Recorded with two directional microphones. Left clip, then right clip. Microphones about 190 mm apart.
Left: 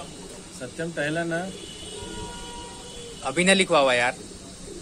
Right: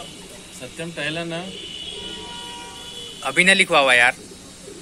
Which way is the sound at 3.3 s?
5° left (ahead or behind).